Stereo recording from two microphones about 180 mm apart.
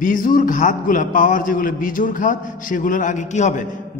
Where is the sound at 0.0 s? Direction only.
45° left (ahead or behind).